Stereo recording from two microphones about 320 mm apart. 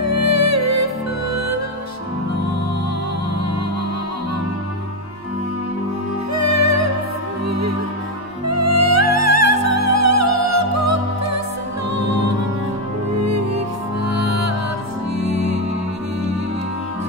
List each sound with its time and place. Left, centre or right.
0.3 s music: right
6.3 s music: right
8.5 s music: right
14.0 s music: right